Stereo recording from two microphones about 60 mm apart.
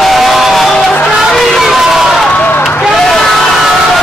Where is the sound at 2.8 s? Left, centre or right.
Centre.